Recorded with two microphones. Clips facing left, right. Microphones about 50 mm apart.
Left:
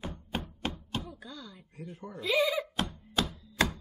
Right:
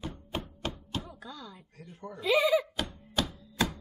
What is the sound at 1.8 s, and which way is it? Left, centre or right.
Speech, centre.